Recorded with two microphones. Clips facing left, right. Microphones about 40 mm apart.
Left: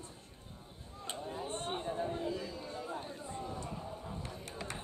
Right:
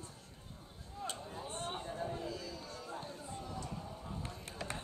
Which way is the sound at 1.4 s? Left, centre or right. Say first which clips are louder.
Left 1 dB; left.